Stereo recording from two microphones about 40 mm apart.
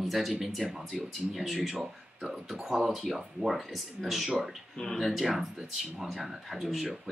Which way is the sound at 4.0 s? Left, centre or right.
Centre.